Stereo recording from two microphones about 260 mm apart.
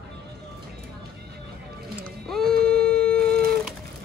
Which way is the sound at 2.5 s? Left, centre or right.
Right.